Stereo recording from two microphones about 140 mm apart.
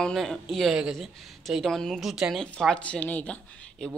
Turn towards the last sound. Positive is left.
turn(degrees=5)  # may be behind; listen again after turning